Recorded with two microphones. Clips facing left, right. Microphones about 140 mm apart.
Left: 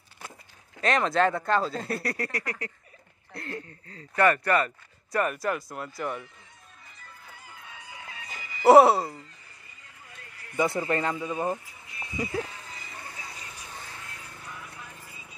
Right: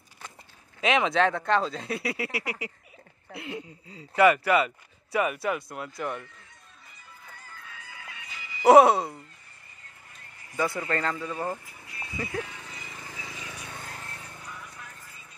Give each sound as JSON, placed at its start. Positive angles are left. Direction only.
{"t": 0.7, "sound": "speech", "side_deg": -5}
{"t": 7.2, "sound": "a sound", "side_deg": 10}
{"t": 8.3, "sound": "music", "side_deg": 45}
{"t": 8.6, "sound": "speech", "side_deg": 0}
{"t": 10.1, "sound": "a sound", "side_deg": 85}
{"t": 10.6, "sound": "speech", "side_deg": 20}
{"t": 13.2, "sound": "vehicle", "side_deg": -90}
{"t": 14.5, "sound": "music", "side_deg": 10}